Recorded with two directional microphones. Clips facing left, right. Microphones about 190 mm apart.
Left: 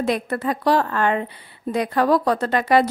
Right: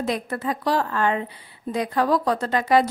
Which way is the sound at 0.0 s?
65° left (ahead or behind).